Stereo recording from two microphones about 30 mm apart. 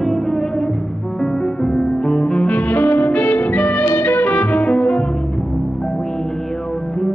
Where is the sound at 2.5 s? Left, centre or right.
Left.